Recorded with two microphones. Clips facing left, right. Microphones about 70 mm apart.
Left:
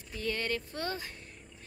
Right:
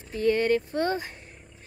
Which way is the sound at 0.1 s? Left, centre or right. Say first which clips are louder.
Right 11 dB; right.